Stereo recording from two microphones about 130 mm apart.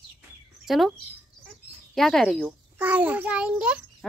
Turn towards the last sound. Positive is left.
turn(degrees=-10)  # may be behind; listen again after turning